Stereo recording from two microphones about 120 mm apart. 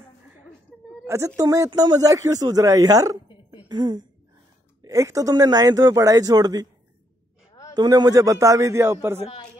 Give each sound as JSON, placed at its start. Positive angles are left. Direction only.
{"t": 1.0, "sound": "a man's voice", "side_deg": -25}
{"t": 7.7, "sound": "a man's voice", "side_deg": -35}